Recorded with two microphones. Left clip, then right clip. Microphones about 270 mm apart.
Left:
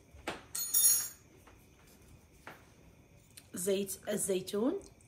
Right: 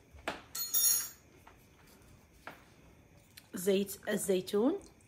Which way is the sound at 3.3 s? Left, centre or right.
Right.